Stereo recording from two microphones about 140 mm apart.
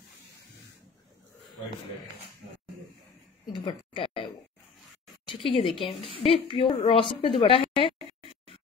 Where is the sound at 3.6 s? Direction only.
40° left (ahead or behind).